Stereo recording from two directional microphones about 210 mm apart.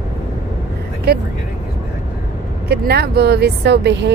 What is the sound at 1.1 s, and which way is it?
Speech, 50° right (ahead or behind).